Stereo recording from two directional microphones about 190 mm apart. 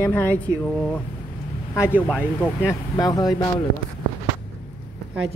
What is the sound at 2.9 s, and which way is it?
Speech, 20° left (ahead or behind).